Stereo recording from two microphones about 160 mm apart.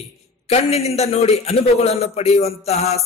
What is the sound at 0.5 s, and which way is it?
A man's voice, 40° left (ahead or behind).